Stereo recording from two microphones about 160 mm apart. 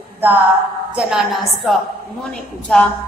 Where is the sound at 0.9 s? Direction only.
Centre (ahead or behind).